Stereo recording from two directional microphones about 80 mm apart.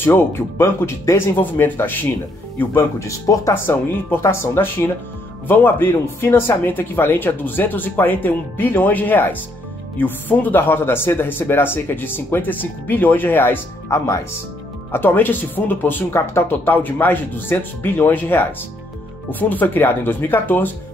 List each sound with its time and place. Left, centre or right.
0.0 s speech: left
3.0 s speech: left
13.8 s speech: left
14.9 s speech: left
19.5 s speech: left